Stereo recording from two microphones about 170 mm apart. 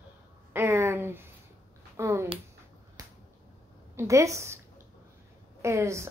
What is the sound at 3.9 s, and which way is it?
Speech, 20° right (ahead or behind).